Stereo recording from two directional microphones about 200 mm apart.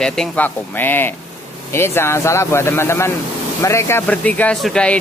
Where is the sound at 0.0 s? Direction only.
5° left (ahead or behind).